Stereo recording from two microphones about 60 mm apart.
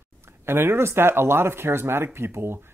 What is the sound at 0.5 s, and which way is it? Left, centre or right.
A man's voice, right.